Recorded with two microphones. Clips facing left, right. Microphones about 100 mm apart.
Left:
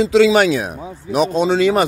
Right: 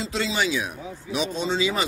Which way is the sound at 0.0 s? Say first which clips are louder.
Left 14 dB; 90° left.